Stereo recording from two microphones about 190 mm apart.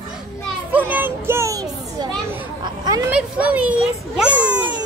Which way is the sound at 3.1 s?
5° right (ahead or behind).